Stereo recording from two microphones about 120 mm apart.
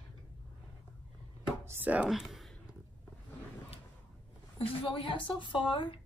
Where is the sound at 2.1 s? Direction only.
Centre (ahead or behind).